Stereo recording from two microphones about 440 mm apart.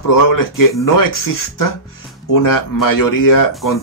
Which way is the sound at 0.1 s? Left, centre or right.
Left.